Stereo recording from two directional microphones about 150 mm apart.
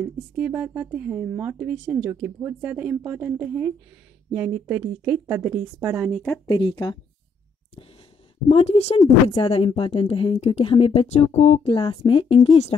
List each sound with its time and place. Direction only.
0.0 s speech: 10° right (ahead or behind)
6.1 s speech: 10° left (ahead or behind)
6.4 s a woman's voice: 30° left (ahead or behind)
8.5 s a woman's voice: 40° left (ahead or behind)